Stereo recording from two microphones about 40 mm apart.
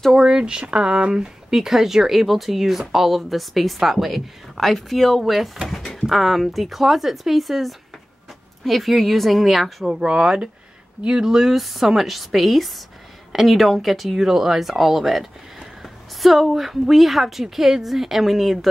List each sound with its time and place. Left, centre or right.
0.1 s speech: centre
1.1 s a woman's voice: centre
5.7 s a sound: centre
6.0 s a woman's voice: centre
9.8 s a woman's voice: right; by 18.7 s centre